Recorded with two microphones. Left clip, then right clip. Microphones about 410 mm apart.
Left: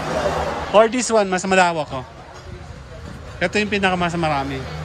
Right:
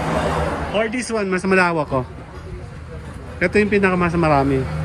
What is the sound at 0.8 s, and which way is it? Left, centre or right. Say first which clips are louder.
Speech: left 8 dB; centre.